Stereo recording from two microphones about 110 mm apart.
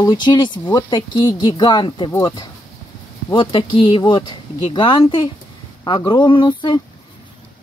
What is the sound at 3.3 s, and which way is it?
Speech, 50° left (ahead or behind).